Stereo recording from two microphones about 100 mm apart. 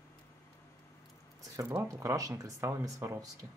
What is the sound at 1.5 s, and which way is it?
Speech, 25° right (ahead or behind).